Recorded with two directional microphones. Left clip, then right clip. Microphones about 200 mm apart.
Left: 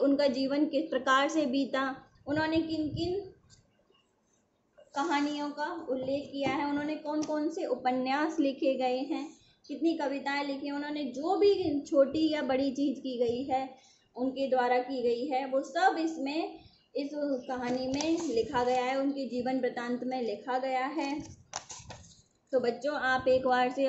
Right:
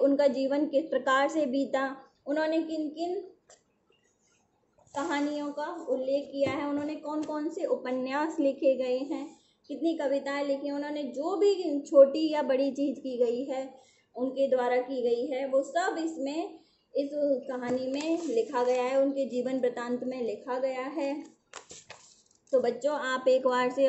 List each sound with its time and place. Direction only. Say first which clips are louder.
0.0 s a woman's voice: right 3 dB; 10° left (ahead or behind)
4.9 s a woman's voice: even; 5° left (ahead or behind)
17.5 s a woman's voice: right 1 dB; 5° left (ahead or behind)
22.5 s a woman's voice: right 3 dB; centre (ahead or behind)